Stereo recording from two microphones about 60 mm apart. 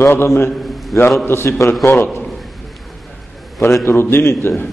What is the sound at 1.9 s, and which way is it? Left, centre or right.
Speech, left.